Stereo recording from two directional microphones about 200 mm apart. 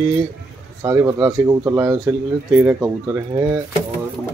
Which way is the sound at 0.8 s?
15° right (ahead or behind).